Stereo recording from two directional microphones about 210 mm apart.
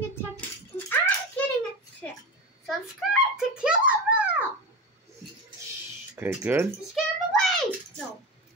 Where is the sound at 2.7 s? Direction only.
Centre (ahead or behind).